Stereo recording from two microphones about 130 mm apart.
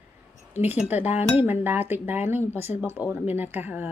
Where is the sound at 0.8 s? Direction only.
15° right (ahead or behind).